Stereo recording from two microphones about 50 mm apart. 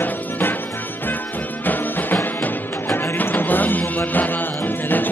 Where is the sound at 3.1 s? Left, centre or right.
Left.